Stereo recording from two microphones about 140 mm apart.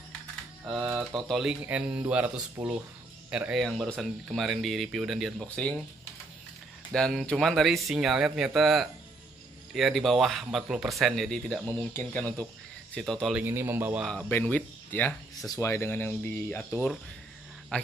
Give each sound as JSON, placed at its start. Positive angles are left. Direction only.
{"t": 1.3, "sound": "speech", "side_deg": -5}
{"t": 6.9, "sound": "speech", "side_deg": 5}
{"t": 11.6, "sound": "speech", "side_deg": 15}
{"t": 13.4, "sound": "speech", "side_deg": -15}
{"t": 14.3, "sound": "a man's voice", "side_deg": 10}